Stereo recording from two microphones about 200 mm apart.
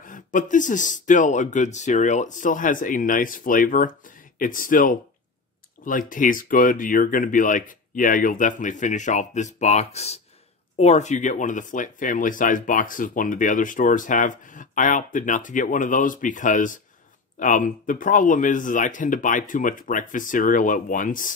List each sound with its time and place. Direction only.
0.0 s speech: 40° left (ahead or behind)